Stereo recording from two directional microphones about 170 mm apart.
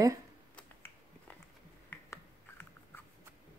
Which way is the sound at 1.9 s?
10° left (ahead or behind).